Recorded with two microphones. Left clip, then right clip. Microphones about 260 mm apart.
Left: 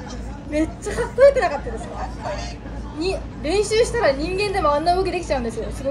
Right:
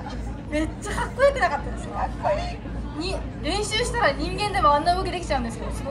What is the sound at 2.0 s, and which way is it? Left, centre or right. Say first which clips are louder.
Speech: right 9 dB; right.